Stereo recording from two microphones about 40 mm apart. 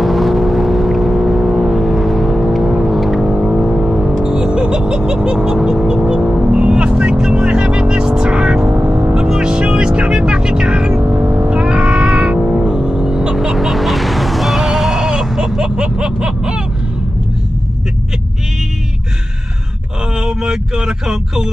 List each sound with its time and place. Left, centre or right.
0.0 s vehicle: centre
3.2 s vehicle: centre
4.2 s music: centre
5.7 s vehicle: centre
6.2 s car: centre
6.6 s vehicle: right
9.1 s music: centre
11.0 s vehicle: right
11.4 s vehicle: right
13.6 s music: centre; by 16.6 s right
20.2 s a sound: centre